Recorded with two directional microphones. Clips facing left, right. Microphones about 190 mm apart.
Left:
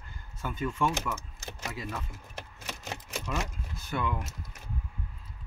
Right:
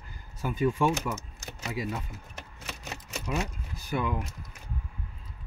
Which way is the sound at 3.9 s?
15° right (ahead or behind).